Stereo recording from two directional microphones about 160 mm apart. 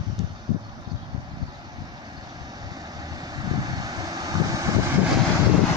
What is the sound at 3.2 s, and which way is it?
Vehicle, 25° right (ahead or behind).